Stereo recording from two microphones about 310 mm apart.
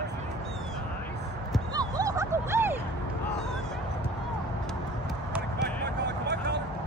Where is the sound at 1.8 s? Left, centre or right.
Centre.